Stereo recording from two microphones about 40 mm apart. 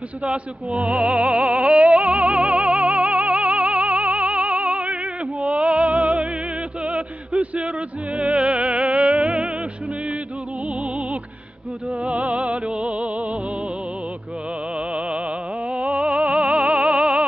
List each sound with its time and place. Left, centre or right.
0.2 s music: right
10.8 s music: right
15.0 s music: right